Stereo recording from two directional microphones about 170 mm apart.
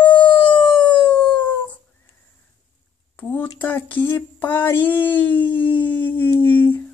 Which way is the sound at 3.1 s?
10° left (ahead or behind).